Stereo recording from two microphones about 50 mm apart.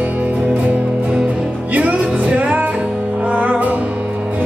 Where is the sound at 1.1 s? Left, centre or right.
Right.